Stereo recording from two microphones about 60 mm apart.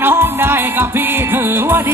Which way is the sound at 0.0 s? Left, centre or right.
Right.